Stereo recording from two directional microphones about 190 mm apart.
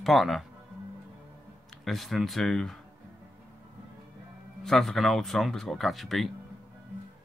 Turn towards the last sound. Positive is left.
turn(degrees=0)  # may be behind; listen again after turning